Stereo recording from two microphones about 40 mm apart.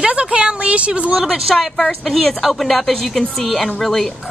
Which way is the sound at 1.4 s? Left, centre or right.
Centre.